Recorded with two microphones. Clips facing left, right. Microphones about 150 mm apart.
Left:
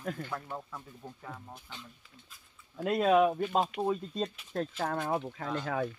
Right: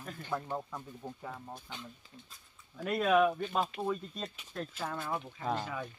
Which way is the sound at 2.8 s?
25° left (ahead or behind).